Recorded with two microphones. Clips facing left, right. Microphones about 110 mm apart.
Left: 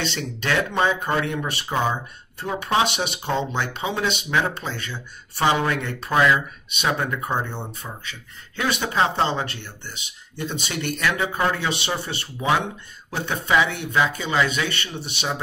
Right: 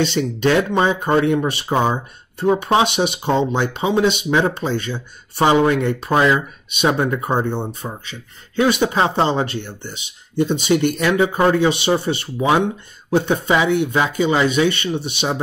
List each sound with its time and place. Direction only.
0.0 s speech: 15° right (ahead or behind)